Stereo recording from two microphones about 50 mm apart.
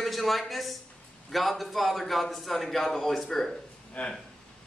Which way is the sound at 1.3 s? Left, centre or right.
Centre.